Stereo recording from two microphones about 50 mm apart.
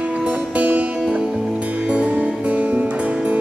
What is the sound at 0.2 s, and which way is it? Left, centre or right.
Music, right.